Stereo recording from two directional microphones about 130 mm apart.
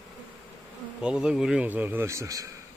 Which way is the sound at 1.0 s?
5° right (ahead or behind).